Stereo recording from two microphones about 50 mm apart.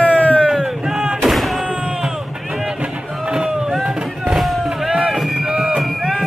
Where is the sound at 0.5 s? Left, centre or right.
Centre.